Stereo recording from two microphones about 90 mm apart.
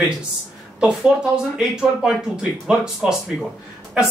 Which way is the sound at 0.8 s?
10° right (ahead or behind).